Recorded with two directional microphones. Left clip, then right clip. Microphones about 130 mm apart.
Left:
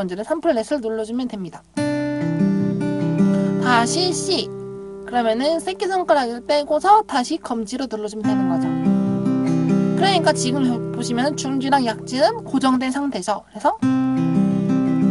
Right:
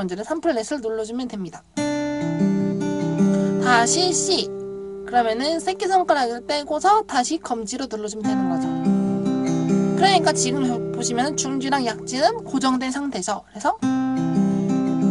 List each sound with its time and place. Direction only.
0.0 s speech: 30° left (ahead or behind)
1.8 s music: 85° left
3.5 s speech: 30° left (ahead or behind)
8.8 s music: 85° left
9.9 s speech: 30° left (ahead or behind)
13.7 s music: 80° left